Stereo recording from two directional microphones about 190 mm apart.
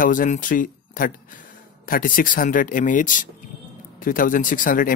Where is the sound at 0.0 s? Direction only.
45° left (ahead or behind).